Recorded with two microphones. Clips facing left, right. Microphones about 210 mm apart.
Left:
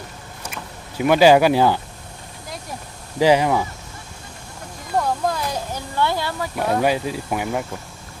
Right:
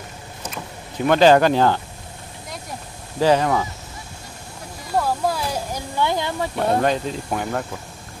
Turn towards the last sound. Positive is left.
turn(degrees=10)  # may be behind; listen again after turning